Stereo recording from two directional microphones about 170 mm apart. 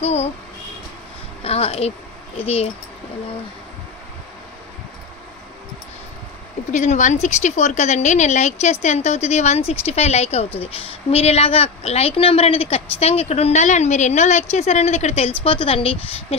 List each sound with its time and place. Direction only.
0.0 s a woman's voice: 40° left (ahead or behind)
1.4 s speech: 35° left (ahead or behind)
6.7 s a woman's voice: 45° left (ahead or behind)